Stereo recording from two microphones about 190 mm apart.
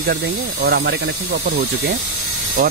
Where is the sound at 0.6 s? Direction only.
65° right (ahead or behind).